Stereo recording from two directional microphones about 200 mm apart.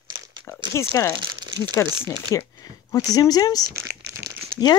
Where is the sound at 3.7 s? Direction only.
10° right (ahead or behind).